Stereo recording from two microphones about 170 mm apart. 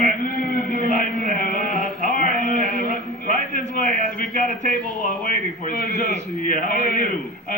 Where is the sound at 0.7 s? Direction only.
45° right (ahead or behind).